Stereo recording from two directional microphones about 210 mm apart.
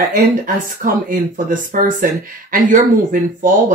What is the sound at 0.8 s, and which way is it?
Speech, 35° right (ahead or behind).